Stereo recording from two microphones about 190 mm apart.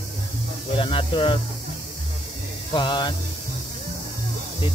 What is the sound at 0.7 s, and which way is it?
Speech, 30° left (ahead or behind).